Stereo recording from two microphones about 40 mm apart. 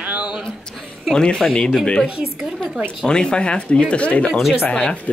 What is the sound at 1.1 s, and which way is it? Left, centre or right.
Speech, centre.